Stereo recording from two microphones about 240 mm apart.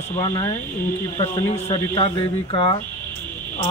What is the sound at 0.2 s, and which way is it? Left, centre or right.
Speech, centre.